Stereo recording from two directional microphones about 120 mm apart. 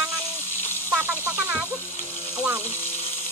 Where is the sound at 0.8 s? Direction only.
20° right (ahead or behind).